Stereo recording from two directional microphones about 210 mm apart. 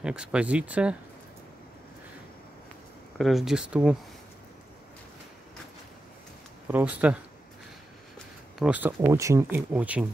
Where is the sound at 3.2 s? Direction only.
Centre (ahead or behind).